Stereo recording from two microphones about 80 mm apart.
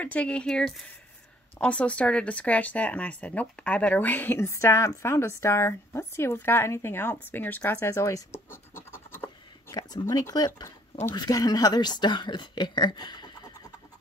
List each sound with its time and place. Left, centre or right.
0.0 s speech: centre
4.5 s a woman's voice: left
7.9 s a woman's voice: left
8.5 s scratch: left
9.8 s speech: left